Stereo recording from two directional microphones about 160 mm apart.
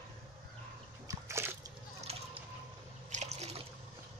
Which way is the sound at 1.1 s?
15° right (ahead or behind).